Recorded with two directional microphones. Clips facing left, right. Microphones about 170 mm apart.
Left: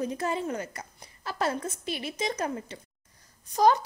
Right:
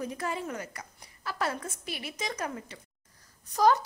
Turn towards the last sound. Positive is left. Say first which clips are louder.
# left 2 dB
turn(degrees=20)  # may be behind; listen again after turning